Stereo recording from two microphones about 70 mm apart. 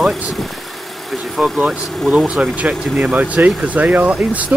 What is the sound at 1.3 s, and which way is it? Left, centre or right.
Speech, centre.